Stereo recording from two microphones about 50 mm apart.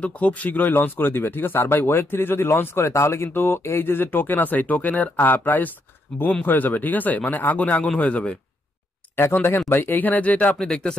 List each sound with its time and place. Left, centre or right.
0.0 s speech: left
3.3 s speech: left
6.1 s speech: centre
6.4 s speech: left
9.1 s speech: left
10.5 s speech: centre